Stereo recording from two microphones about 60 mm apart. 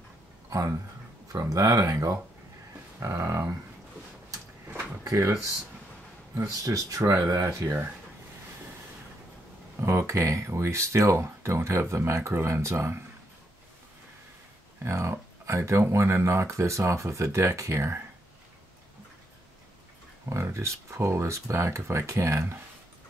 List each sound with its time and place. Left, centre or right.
0.5 s speech: right
1.3 s speech: right
3.1 s speech: right
5.2 s a man's voice: right
7.4 s speech: right
9.8 s speech: right
14.9 s speech: right
20.5 s speech: right